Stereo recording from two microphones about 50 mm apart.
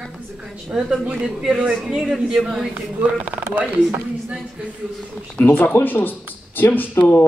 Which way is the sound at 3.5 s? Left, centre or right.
Right.